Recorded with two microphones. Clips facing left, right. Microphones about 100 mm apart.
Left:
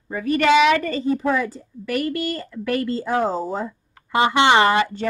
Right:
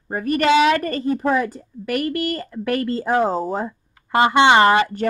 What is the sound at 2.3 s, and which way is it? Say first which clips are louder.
A woman's voice: right 1 dB; 50° right (ahead or behind).